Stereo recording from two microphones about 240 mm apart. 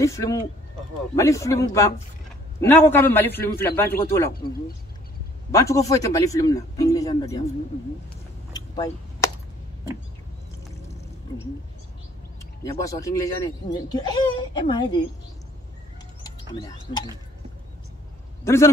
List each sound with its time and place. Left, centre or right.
0.0 s speech: centre
4.3 s speech: left
5.5 s speech: centre
8.5 s a sound: centre
12.6 s speech: centre
18.4 s a man's voice: centre